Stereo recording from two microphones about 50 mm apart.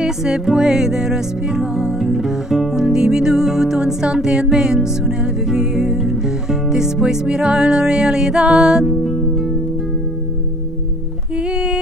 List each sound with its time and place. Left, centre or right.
0.0 s music: centre
11.3 s music: centre